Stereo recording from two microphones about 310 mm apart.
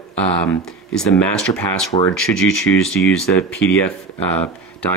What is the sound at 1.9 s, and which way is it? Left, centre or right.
Speech, centre.